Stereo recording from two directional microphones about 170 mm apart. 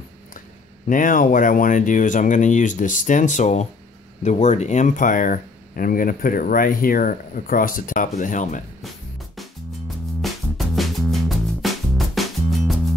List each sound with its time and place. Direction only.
0.8 s speech: 50° left (ahead or behind)
8.8 s music: centre (ahead or behind)